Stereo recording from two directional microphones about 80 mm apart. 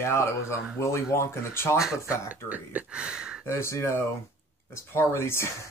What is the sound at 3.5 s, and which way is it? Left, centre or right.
Speech, left.